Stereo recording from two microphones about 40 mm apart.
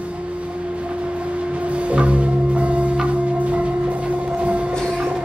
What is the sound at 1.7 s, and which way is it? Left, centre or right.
Music, right.